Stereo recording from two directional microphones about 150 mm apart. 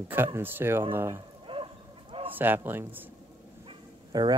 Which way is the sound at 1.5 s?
35° right (ahead or behind).